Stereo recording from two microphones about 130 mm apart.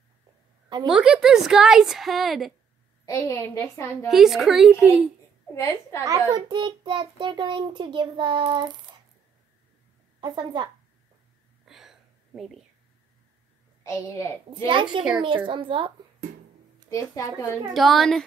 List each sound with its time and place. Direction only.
0.8 s a woman's voice: 5° right (ahead or behind)
3.2 s a woman's voice: 25° left (ahead or behind)
4.1 s a woman's voice: centre (ahead or behind)
5.5 s a woman's voice: 20° left (ahead or behind)
6.0 s a child's voice: 25° right (ahead or behind)
10.2 s a child's voice: 35° right (ahead or behind)
11.6 s whispering: centre (ahead or behind)
13.8 s a woman's voice: 25° left (ahead or behind)
14.7 s a child's voice: 40° right (ahead or behind)
16.9 s a woman's voice: 25° left (ahead or behind)
17.7 s a woman's voice: centre (ahead or behind)